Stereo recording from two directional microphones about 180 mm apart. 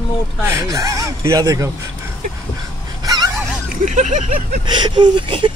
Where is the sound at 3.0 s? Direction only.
20° right (ahead or behind).